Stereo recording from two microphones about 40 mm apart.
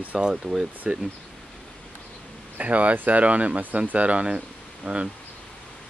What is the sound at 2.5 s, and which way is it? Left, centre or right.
Speech, right.